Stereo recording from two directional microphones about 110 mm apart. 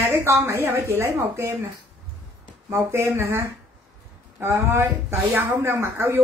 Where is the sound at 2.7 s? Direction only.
25° right (ahead or behind).